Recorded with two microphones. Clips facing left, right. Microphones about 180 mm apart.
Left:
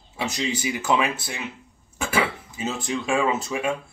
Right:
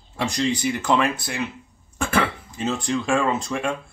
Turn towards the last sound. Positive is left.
turn(degrees=5)  # may be behind; listen again after turning